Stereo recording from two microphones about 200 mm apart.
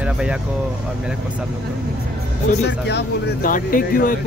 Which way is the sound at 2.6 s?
55° left (ahead or behind).